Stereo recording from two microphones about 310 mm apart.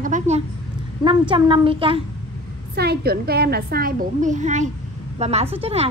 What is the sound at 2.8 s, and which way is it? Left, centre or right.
A woman's voice, right.